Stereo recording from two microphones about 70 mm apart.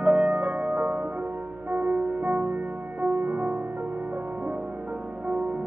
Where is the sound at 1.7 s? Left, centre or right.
Right.